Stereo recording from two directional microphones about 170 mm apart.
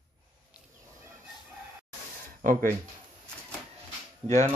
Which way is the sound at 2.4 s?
55° right (ahead or behind).